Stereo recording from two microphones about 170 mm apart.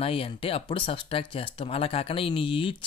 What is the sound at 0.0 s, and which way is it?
Speech, 35° left (ahead or behind).